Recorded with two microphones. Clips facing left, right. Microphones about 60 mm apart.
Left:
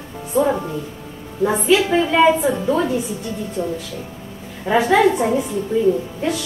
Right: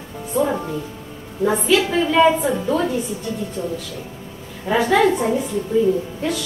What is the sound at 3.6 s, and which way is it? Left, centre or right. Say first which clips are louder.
Speech: left 5 dB; left.